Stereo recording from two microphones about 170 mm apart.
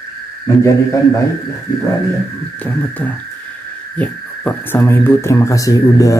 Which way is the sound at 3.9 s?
10° left (ahead or behind).